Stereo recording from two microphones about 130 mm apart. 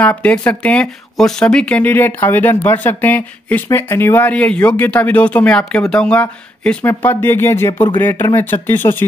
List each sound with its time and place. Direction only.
0.0 s speech: 10° left (ahead or behind)